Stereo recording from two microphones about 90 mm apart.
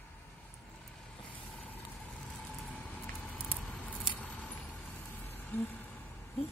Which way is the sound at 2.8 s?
15° left (ahead or behind).